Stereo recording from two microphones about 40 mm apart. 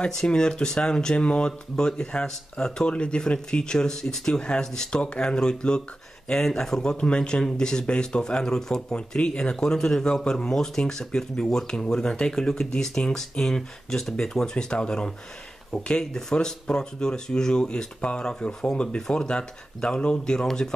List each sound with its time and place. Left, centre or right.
0.3 s speech: left
2.9 s speech: left
9.1 s speech: left
20.4 s speech: centre